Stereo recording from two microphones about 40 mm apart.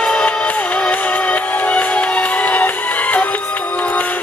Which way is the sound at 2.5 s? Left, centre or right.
Left.